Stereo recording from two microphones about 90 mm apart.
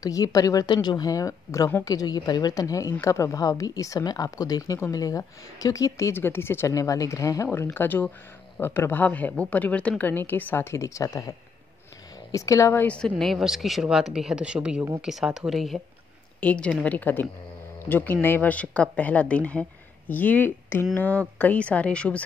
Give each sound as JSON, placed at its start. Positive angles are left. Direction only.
{"t": 0.0, "sound": "a woman's voice", "side_deg": 40}
{"t": 6.1, "sound": "a woman's voice", "side_deg": 25}
{"t": 6.7, "sound": "a woman's voice", "side_deg": 40}
{"t": 7.5, "sound": "a woman's voice", "side_deg": 25}
{"t": 12.8, "sound": "a woman's voice", "side_deg": 10}
{"t": 13.2, "sound": "speech", "side_deg": 0}
{"t": 16.3, "sound": "a woman's voice", "side_deg": 15}